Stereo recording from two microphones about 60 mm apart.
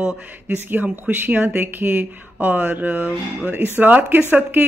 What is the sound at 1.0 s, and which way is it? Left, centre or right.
Speech, right.